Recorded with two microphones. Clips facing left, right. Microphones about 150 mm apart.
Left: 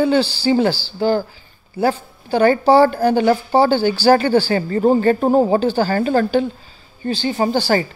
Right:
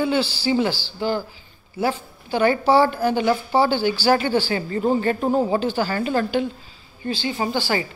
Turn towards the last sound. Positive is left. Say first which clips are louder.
# left 6 dB
turn(degrees=40)  # may be behind; listen again after turning